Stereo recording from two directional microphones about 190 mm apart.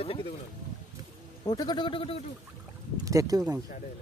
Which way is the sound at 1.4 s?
20° left (ahead or behind).